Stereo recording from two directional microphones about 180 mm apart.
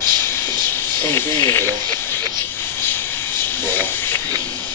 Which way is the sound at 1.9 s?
10° left (ahead or behind).